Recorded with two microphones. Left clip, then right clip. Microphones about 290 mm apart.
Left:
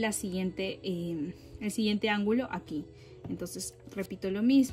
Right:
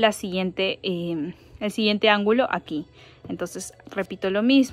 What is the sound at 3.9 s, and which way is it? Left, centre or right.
Speech, right.